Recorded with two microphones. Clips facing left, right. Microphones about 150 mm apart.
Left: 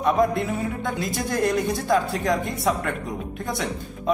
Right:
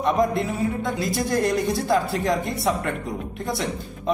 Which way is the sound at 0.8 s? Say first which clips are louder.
Right 2 dB; centre (ahead or behind).